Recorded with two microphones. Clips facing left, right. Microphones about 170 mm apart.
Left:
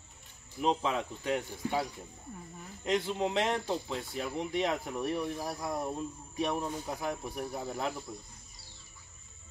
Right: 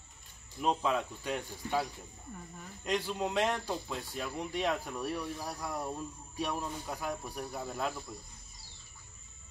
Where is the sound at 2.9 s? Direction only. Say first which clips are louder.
Left 2 dB; 20° left (ahead or behind).